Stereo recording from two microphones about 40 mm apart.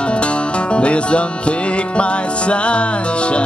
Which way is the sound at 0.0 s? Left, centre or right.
Left.